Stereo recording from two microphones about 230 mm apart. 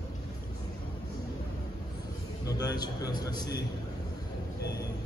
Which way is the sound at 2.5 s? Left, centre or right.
Centre.